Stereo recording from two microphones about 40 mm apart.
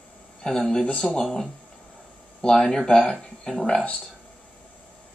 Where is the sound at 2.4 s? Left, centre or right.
Centre.